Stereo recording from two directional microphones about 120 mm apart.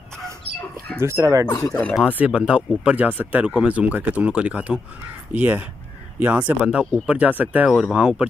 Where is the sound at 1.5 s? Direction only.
30° left (ahead or behind).